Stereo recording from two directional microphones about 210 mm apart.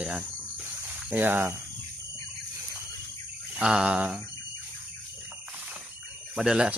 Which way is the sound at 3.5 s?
5° right (ahead or behind).